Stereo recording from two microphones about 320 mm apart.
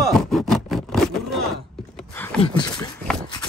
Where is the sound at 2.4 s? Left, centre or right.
Centre.